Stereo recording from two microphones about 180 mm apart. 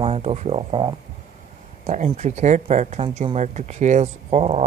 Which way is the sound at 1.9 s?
40° right (ahead or behind).